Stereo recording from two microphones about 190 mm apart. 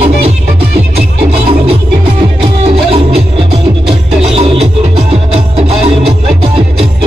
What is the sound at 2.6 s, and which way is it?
Music, 35° right (ahead or behind).